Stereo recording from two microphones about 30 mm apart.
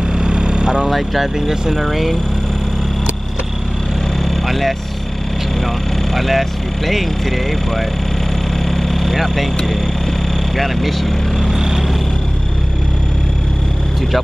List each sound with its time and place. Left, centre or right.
0.2 s vehicle: right
0.8 s speech: centre
4.2 s vehicle: centre
6.1 s speech: centre
8.6 s vehicle: centre
10.5 s speech: centre